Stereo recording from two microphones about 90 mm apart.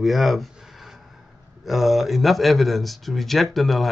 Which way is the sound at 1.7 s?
Centre (ahead or behind).